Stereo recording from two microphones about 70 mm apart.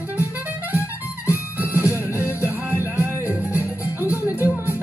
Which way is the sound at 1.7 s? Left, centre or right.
Right.